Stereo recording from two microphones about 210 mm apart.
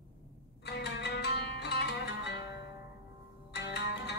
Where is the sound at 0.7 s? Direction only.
50° left (ahead or behind).